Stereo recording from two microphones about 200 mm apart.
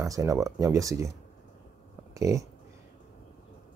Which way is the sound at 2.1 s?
15° right (ahead or behind).